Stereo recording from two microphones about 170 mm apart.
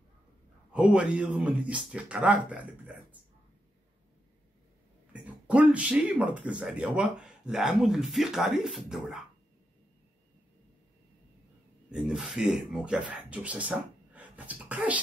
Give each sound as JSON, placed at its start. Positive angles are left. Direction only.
{"t": 0.7, "sound": "speech", "side_deg": -5}
{"t": 5.1, "sound": "speech", "side_deg": -10}
{"t": 11.9, "sound": "speech", "side_deg": -5}